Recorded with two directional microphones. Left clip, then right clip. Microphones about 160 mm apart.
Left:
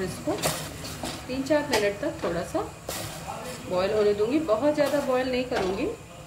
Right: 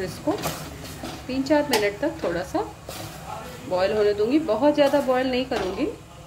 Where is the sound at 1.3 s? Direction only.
45° right (ahead or behind).